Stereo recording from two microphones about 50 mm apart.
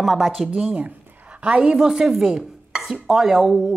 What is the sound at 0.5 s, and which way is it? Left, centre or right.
A woman's voice, right.